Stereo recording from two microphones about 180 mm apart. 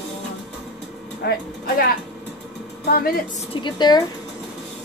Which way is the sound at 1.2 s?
60° left (ahead or behind).